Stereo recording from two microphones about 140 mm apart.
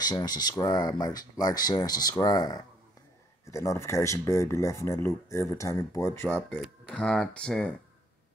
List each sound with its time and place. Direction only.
0.0 s speech: 30° left (ahead or behind); by 7.7 s 5° left (ahead or behind)